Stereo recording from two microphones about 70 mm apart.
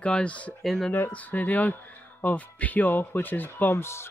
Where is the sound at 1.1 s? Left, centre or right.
Left.